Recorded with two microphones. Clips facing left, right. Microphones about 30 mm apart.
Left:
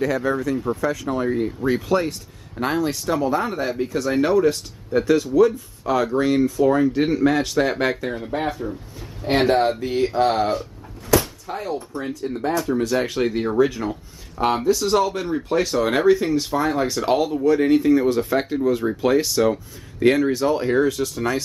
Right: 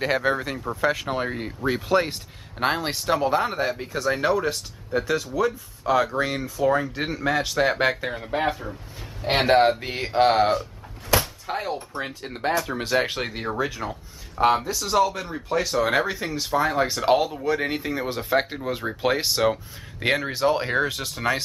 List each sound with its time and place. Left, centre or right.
0.0 s speech: right
1.3 s speech: right
3.6 s speech: centre
9.5 s speech: right
12.9 s speech: right
13.2 s speech: centre; by 21.4 s right